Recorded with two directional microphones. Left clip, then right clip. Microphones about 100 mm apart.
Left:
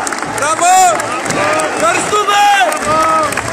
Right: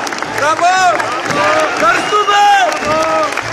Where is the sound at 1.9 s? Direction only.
30° left (ahead or behind).